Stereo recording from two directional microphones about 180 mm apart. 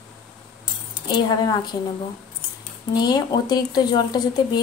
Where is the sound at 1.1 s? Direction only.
25° left (ahead or behind).